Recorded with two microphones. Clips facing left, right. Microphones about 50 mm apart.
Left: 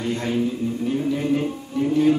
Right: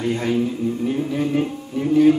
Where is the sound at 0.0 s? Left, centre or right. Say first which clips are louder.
Right 2 dB; centre.